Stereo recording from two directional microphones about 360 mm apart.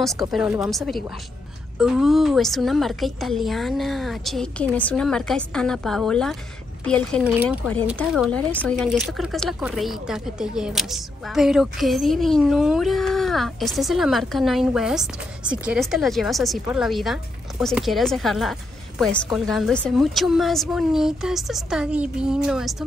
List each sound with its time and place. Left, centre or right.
0.0 s speech: centre